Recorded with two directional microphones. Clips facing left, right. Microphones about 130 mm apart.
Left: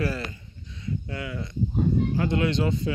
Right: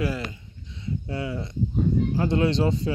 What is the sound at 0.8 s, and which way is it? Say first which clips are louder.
Speech: right 3 dB; 30° right (ahead or behind).